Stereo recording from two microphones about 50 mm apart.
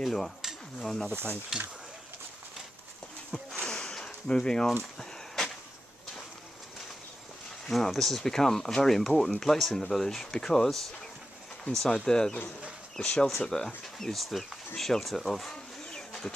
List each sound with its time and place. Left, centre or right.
0.0 s speech: centre
1.5 s speech: centre
3.6 s a sound: centre
7.6 s speech: centre
16.1 s bird: centre